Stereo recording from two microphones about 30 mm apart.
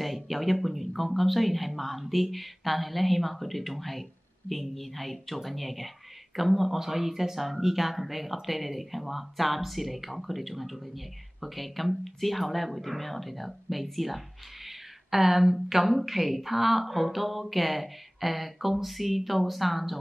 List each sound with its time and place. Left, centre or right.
0.0 s a woman's voice: centre